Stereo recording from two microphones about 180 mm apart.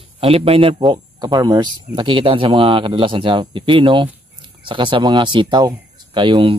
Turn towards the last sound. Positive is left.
turn(degrees=-25)  # may be behind; listen again after turning